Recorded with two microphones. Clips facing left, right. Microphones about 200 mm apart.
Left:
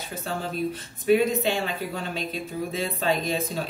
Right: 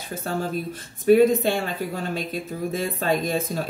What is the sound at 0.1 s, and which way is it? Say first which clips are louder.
Speech: right 5 dB; 50° right (ahead or behind).